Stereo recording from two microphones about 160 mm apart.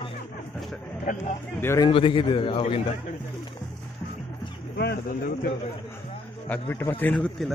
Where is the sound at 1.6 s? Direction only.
15° left (ahead or behind).